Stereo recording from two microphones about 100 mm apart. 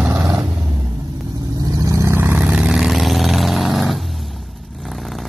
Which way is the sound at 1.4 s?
35° right (ahead or behind).